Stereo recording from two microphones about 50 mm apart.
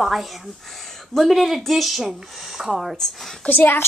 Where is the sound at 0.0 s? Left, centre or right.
Centre.